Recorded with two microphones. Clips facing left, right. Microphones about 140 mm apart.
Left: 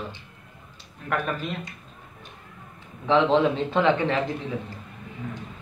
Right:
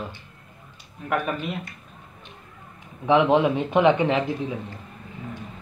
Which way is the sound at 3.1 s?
15° right (ahead or behind).